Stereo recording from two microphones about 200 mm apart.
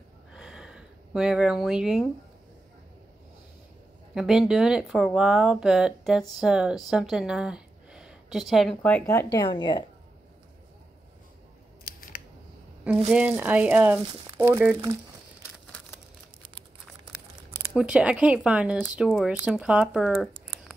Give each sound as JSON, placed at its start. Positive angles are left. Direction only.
{"t": 0.3, "sound": "a sound", "side_deg": -5}
{"t": 4.1, "sound": "speech", "side_deg": -5}
{"t": 11.8, "sound": "scissors", "side_deg": 45}
{"t": 13.1, "sound": "speech", "side_deg": -5}
{"t": 17.7, "sound": "speech", "side_deg": -5}